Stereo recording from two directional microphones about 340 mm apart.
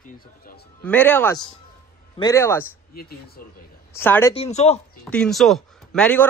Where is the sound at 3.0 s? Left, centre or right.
Left.